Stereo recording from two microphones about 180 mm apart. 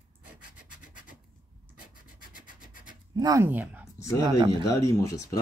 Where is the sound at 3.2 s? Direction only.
20° right (ahead or behind).